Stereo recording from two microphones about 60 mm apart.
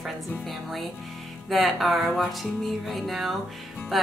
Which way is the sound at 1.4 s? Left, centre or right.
Centre.